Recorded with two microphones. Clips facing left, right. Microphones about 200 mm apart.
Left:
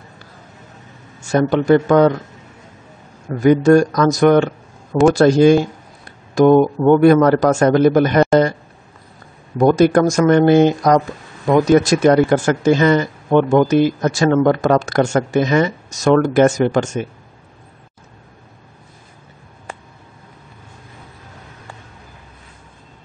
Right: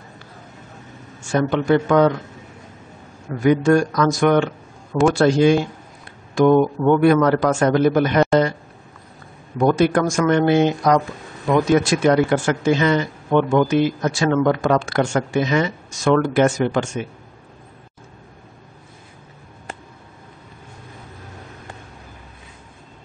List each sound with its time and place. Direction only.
1.2 s speech: 40° left (ahead or behind)
3.3 s speech: 40° left (ahead or behind)
9.6 s speech: 40° left (ahead or behind)